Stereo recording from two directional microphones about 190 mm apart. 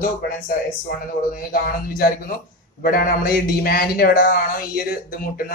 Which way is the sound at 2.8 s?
50° left (ahead or behind).